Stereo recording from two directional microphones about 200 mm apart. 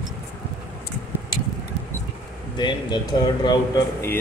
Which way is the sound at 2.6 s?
20° left (ahead or behind).